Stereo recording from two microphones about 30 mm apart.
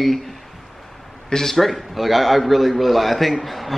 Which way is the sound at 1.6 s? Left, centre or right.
Centre.